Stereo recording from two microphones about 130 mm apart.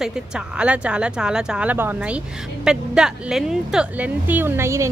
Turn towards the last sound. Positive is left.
turn(degrees=-20)  # may be behind; listen again after turning